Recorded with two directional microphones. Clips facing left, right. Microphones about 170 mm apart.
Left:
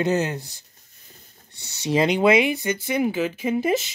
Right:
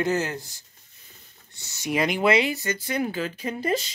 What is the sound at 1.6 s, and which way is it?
Speech, 25° left (ahead or behind).